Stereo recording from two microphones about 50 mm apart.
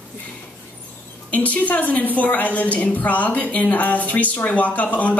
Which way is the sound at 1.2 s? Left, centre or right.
Left.